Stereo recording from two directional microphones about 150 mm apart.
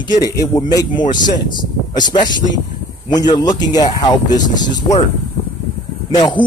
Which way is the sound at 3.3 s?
25° left (ahead or behind).